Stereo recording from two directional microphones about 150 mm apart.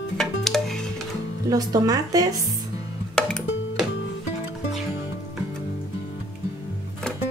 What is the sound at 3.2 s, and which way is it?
Music, 5° left (ahead or behind).